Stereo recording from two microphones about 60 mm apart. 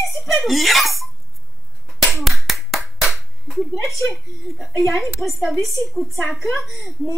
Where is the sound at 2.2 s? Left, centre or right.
Centre.